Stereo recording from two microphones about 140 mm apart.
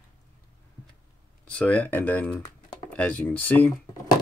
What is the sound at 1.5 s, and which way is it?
Speech, 10° left (ahead or behind).